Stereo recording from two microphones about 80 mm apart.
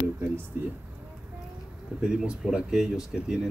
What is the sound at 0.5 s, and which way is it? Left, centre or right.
Speech, right.